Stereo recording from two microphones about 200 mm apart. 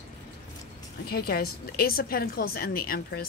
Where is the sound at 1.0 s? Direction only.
50° left (ahead or behind).